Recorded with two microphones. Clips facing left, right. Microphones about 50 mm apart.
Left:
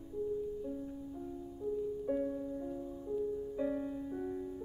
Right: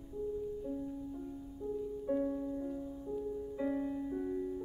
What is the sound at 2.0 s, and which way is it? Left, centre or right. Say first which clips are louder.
Music: right 4 dB; centre.